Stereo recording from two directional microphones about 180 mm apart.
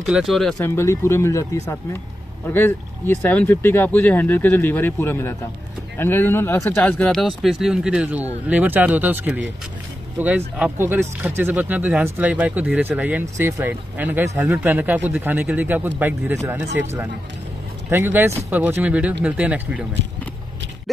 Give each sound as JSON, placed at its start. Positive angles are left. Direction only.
{"t": 0.0, "sound": "speech", "side_deg": 0}
{"t": 0.7, "sound": "speech", "side_deg": 15}
{"t": 17.8, "sound": "speech", "side_deg": -10}